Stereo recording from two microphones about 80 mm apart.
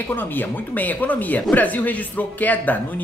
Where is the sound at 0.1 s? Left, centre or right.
Left.